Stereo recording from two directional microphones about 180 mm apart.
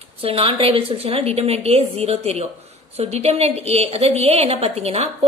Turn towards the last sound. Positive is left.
turn(degrees=-35)  # may be behind; listen again after turning